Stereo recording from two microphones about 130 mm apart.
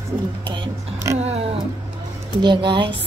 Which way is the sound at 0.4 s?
40° right (ahead or behind).